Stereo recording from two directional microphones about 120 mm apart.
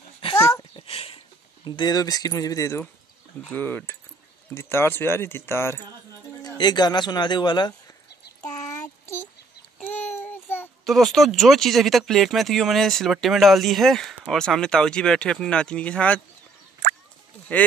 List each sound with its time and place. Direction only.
0.4 s a sound: 20° left (ahead or behind)
0.7 s a sound: 55° left (ahead or behind)
1.6 s speech: 35° left (ahead or behind)
3.5 s speech: 15° left (ahead or behind)
6.4 s speech: 35° left (ahead or behind)
8.5 s child singing: 30° left (ahead or behind)
10.9 s speech: centre (ahead or behind)